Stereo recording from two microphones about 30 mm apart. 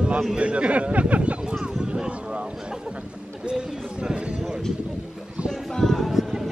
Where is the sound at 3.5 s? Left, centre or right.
Right.